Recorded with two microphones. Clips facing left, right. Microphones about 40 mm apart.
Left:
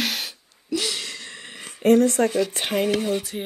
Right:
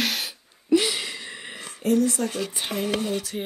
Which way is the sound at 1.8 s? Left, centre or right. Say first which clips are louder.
Left 5 dB; left.